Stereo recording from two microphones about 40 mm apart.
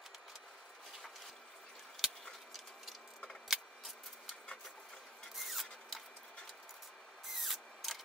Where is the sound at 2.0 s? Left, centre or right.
Centre.